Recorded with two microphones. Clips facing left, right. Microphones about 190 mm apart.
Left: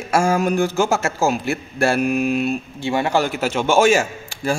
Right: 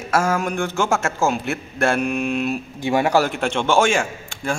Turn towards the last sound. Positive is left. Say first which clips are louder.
# left 3 dB
turn(degrees=5)  # may be behind; listen again after turning